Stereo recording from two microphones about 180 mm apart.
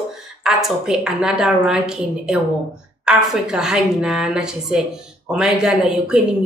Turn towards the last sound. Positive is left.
turn(degrees=-5)  # may be behind; listen again after turning